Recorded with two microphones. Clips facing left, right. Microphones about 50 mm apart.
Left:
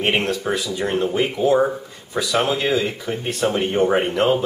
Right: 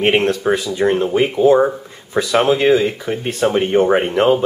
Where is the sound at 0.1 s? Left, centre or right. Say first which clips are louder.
Right 6 dB; right.